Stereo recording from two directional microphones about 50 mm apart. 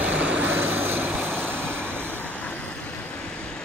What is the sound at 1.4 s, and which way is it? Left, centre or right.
Vehicle, left.